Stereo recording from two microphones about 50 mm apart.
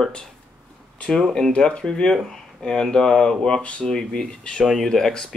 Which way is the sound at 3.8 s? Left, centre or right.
Centre.